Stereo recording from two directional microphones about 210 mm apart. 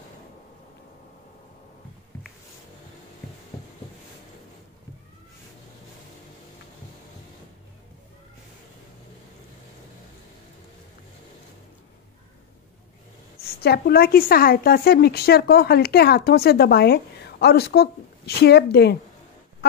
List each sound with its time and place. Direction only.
13.4 s a woman's voice: 50° left (ahead or behind)